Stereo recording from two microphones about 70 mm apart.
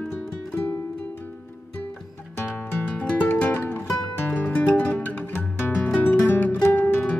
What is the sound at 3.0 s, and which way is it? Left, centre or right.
Music, left.